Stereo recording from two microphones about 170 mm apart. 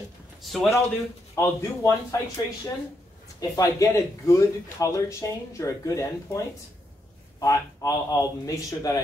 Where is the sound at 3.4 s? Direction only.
20° left (ahead or behind).